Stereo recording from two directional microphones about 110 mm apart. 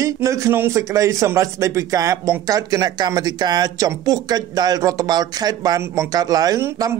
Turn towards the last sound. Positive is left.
turn(degrees=-25)  # may be behind; listen again after turning